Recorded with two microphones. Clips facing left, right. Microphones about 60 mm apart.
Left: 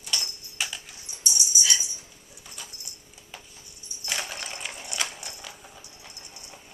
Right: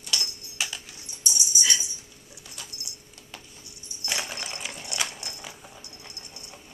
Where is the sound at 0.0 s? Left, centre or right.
Centre.